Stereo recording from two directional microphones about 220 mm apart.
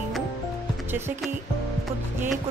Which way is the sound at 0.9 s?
10° right (ahead or behind).